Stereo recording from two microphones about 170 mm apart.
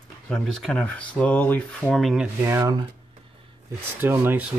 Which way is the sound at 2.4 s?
15° right (ahead or behind).